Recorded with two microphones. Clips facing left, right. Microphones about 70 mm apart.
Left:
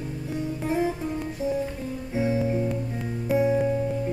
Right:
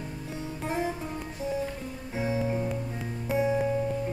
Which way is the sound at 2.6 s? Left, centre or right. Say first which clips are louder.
Left 4 dB; centre.